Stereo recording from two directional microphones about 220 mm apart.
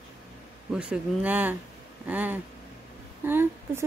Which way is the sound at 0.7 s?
5° right (ahead or behind).